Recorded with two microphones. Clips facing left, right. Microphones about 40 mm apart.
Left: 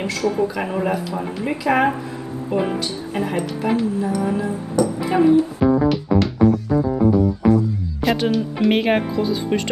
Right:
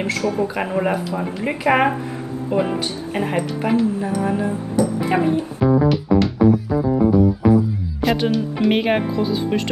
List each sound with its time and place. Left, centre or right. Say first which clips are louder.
0.0 s speech: even; right
5.6 s music: even; centre